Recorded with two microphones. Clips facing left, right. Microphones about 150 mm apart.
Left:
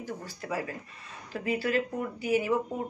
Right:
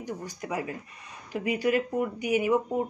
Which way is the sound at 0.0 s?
15° right (ahead or behind).